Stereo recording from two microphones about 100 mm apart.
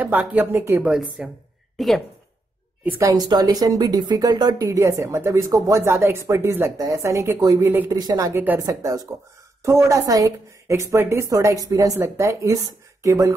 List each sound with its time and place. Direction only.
0.0 s speech: 15° right (ahead or behind)
0.8 s speech: 10° right (ahead or behind)
1.8 s a woman's voice: centre (ahead or behind)
3.0 s a woman's voice: 40° right (ahead or behind)
4.7 s speech: 25° right (ahead or behind)
7.6 s speech: 20° right (ahead or behind)
7.9 s a woman's voice: 40° right (ahead or behind)
8.6 s a woman's voice: 35° right (ahead or behind)
12.0 s speech: 25° right (ahead or behind)